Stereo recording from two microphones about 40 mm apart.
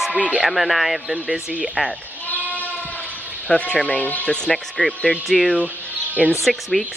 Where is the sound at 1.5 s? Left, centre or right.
Right.